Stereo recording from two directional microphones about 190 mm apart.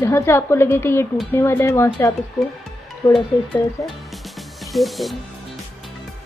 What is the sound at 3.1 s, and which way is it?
Speech, centre (ahead or behind).